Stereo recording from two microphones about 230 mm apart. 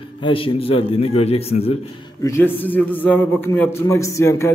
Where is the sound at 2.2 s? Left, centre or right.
Centre.